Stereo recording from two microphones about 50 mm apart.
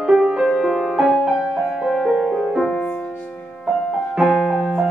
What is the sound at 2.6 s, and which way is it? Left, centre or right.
Music, centre.